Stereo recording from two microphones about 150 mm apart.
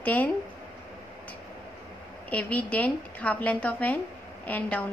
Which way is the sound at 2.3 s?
10° left (ahead or behind).